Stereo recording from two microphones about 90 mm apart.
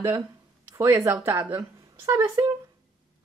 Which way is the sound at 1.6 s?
35° right (ahead or behind).